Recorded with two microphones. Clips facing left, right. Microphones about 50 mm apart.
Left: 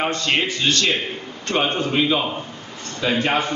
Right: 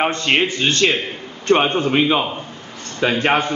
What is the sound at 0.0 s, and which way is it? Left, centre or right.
A man's voice, right.